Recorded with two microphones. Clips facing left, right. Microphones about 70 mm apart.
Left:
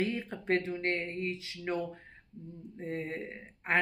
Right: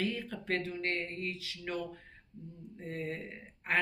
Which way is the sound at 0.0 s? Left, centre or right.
Left.